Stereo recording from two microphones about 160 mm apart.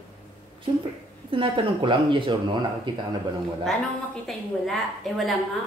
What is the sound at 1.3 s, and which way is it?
Speech, 35° right (ahead or behind).